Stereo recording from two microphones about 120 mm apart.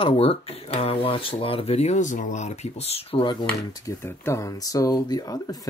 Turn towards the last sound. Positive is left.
turn(degrees=30)  # may be behind; listen again after turning